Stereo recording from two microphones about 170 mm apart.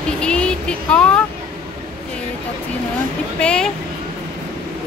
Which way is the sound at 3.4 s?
5° left (ahead or behind).